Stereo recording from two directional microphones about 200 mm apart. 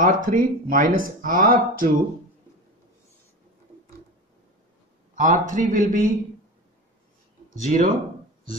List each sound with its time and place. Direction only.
0.0 s speech: 45° right (ahead or behind)
5.1 s a sound: 40° right (ahead or behind)
5.5 s a man's voice: 40° right (ahead or behind)
7.6 s a man's voice: 40° right (ahead or behind)